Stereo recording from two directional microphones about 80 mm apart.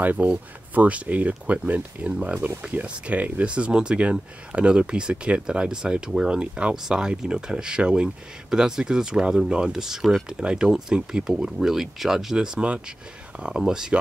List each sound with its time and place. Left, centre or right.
0.0 s speech: centre